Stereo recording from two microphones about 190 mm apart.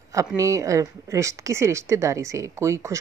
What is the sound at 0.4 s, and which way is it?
Speech, 15° right (ahead or behind).